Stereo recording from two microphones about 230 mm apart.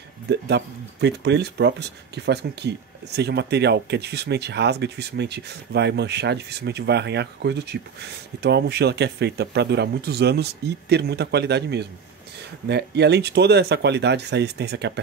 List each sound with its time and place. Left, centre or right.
0.3 s speech: right